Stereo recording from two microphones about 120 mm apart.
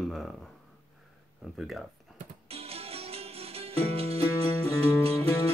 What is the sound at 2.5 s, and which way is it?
Music, 55° right (ahead or behind).